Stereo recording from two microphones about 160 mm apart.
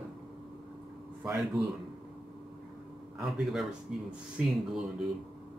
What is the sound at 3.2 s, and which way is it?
Speech, centre (ahead or behind).